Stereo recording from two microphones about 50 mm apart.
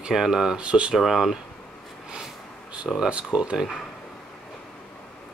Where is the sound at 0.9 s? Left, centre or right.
Centre.